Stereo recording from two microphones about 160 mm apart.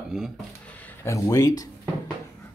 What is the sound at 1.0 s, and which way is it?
Speech, 20° left (ahead or behind).